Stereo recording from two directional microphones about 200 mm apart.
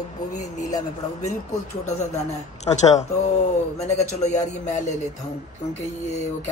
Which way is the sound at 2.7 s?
15° left (ahead or behind).